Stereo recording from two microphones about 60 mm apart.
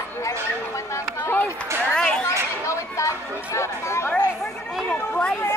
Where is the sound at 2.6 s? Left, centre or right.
Left.